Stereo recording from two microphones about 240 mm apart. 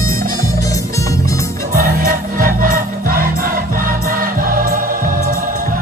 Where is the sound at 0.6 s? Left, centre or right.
Centre.